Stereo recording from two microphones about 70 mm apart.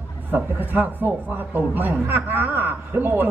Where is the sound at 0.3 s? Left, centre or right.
Right.